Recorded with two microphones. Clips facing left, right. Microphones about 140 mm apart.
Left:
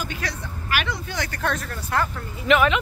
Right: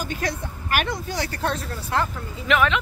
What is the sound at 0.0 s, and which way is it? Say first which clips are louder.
Speech: right 3 dB; 45° right (ahead or behind).